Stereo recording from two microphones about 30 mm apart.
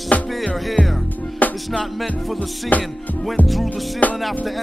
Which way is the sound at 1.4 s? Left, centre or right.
Left.